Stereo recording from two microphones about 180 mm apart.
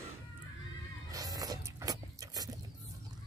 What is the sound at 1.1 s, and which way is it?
Livestock, 20° right (ahead or behind).